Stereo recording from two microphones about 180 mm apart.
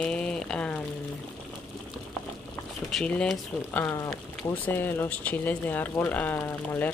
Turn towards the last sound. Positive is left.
turn(degrees=10)  # may be behind; listen again after turning